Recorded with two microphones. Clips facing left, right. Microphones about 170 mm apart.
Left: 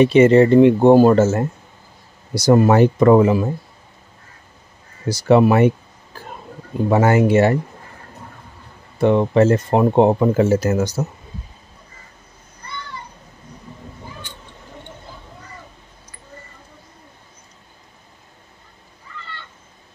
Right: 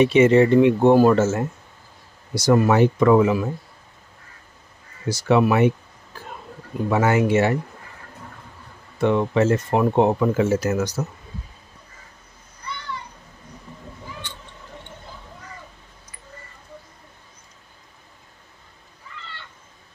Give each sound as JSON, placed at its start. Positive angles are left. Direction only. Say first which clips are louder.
{"t": 0.0, "sound": "speech", "louder": "left 3 dB", "side_deg": 35}
{"t": 5.0, "sound": "speech", "louder": "left 5 dB", "side_deg": 35}
{"t": 6.9, "sound": "speech", "louder": "left 4 dB", "side_deg": 40}
{"t": 9.0, "sound": "speech", "louder": "left 4 dB", "side_deg": 35}